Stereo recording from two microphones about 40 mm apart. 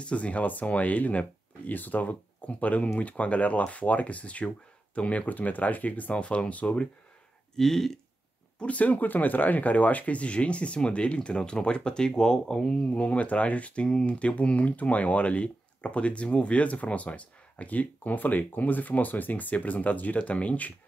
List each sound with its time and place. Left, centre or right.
0.0 s speech: left
7.5 s speech: centre
8.5 s speech: left
13.8 s speech: centre
14.2 s speech: left